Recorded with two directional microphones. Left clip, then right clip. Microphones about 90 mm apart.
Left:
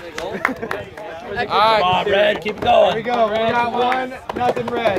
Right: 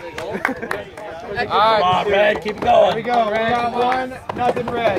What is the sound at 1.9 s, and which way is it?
Speech, 35° right (ahead or behind).